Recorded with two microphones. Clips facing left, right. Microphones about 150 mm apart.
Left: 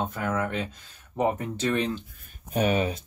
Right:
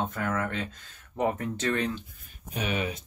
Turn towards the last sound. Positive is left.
turn(degrees=35)  # may be behind; listen again after turning